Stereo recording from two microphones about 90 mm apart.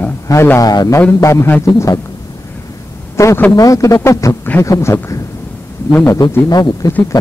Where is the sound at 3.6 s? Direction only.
40° left (ahead or behind).